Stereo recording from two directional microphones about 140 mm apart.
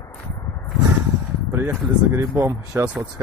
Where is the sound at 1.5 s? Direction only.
15° right (ahead or behind).